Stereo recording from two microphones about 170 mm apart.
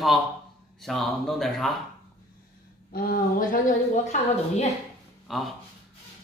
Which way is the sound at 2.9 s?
60° left (ahead or behind).